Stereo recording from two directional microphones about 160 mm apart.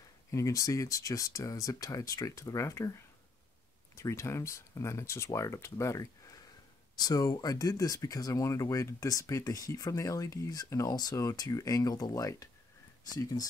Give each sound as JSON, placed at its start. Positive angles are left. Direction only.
{"t": 0.3, "sound": "speech", "side_deg": 20}
{"t": 3.9, "sound": "speech", "side_deg": 20}